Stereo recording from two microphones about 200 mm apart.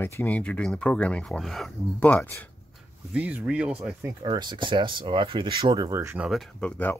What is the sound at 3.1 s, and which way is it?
Speech, 10° right (ahead or behind).